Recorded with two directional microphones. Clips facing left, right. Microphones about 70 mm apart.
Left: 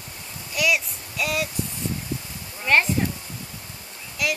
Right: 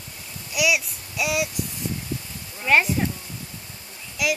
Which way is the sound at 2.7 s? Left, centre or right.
Centre.